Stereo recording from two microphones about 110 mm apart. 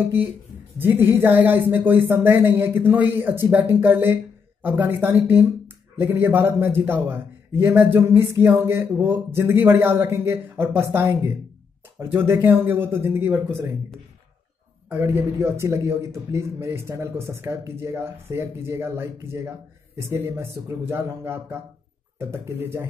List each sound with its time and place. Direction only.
0.7 s a man's voice: 20° right (ahead or behind)
14.9 s a man's voice: 20° right (ahead or behind)